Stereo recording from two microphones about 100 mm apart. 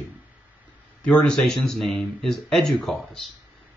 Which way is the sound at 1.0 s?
10° left (ahead or behind).